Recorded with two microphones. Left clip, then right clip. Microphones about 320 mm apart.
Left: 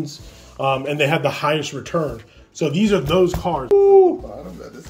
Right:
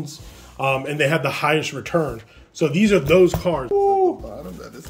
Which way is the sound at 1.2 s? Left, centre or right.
Centre.